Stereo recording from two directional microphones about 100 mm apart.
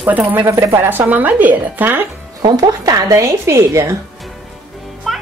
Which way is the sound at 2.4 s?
40° right (ahead or behind).